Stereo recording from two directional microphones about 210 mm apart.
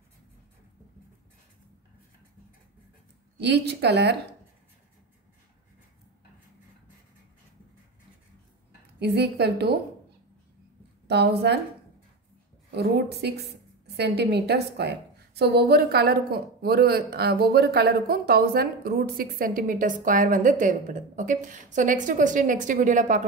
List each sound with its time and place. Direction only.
3.3 s a woman's voice: 55° right (ahead or behind)
9.0 s a woman's voice: 50° right (ahead or behind)
11.1 s a woman's voice: 50° right (ahead or behind)
12.7 s a woman's voice: 50° right (ahead or behind)